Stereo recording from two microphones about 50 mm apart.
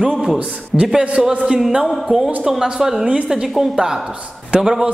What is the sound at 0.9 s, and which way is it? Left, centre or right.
A woman's voice, centre.